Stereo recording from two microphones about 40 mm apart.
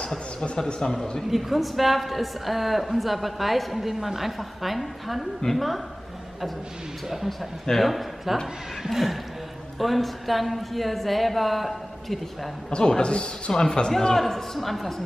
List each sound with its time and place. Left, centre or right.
0.0 s a man's voice: centre
1.3 s a woman's voice: centre
5.4 s a man's voice: centre
7.1 s a woman's voice: centre
12.7 s a man's voice: left; by 15.0 s centre